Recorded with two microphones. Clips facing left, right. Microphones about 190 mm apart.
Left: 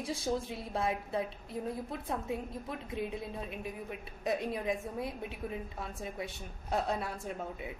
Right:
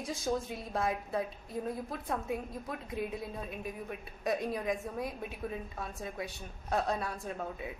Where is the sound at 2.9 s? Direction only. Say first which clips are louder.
Even; 25° left (ahead or behind).